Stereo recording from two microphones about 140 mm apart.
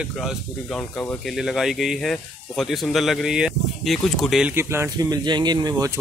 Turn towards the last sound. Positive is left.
turn(degrees=-25)  # may be behind; listen again after turning